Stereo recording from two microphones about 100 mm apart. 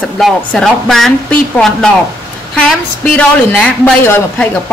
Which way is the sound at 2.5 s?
5° left (ahead or behind).